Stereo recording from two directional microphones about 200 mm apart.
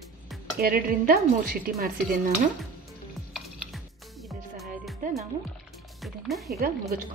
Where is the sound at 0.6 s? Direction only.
45° right (ahead or behind).